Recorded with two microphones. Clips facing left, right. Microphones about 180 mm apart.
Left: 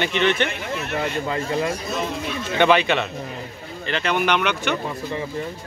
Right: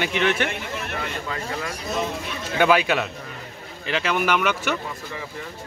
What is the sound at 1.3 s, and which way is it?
Speech, 25° left (ahead or behind).